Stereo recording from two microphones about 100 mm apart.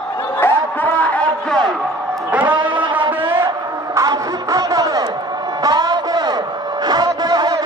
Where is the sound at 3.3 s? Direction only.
30° right (ahead or behind).